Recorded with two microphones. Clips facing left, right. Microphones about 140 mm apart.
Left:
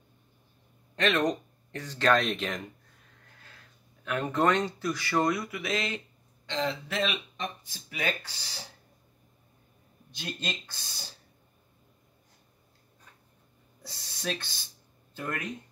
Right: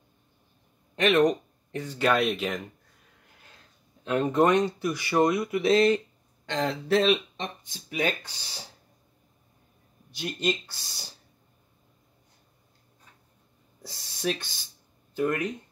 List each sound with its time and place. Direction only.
0.9 s speech: 10° right (ahead or behind)
4.0 s speech: 20° right (ahead or behind)
6.4 s speech: 50° right (ahead or behind)
7.0 s speech: 30° right (ahead or behind)
7.7 s speech: 20° right (ahead or behind)
10.1 s speech: 15° right (ahead or behind)
13.8 s speech: 15° right (ahead or behind)